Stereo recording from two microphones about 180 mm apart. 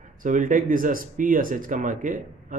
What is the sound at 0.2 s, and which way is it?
Speech, 45° right (ahead or behind).